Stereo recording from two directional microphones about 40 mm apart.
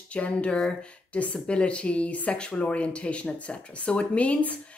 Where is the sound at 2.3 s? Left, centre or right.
Left.